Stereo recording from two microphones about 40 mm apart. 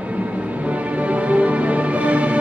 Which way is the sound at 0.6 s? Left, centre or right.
Right.